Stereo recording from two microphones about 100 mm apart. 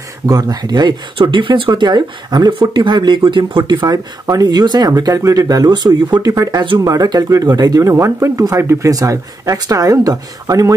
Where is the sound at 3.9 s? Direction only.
40° right (ahead or behind).